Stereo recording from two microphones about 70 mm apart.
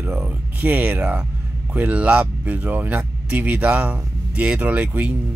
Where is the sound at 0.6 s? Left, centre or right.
Right.